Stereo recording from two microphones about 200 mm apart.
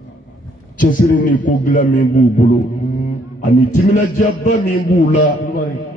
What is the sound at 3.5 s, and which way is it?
A man's voice, 40° left (ahead or behind).